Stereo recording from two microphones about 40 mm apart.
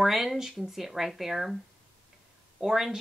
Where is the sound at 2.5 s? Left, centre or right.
Centre.